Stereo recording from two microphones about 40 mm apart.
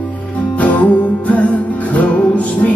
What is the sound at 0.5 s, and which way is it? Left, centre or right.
Music, left.